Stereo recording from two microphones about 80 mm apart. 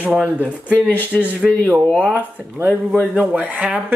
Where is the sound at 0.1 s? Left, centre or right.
Centre.